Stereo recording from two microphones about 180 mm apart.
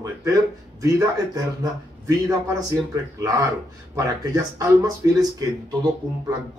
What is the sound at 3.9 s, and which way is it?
Speech, 20° right (ahead or behind).